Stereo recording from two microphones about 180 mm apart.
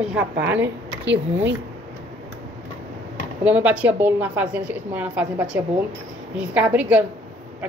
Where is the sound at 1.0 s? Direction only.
80° right.